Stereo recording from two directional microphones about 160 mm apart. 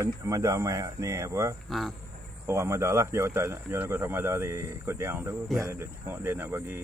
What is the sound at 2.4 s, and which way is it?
Speech, 15° right (ahead or behind).